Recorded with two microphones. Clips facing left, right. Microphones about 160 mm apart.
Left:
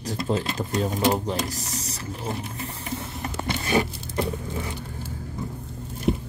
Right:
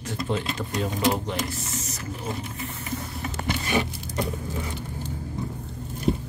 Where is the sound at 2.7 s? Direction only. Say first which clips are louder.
Even; 35° left (ahead or behind).